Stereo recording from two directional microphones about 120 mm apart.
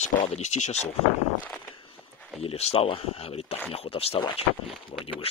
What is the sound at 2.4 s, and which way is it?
Speech, 55° left (ahead or behind).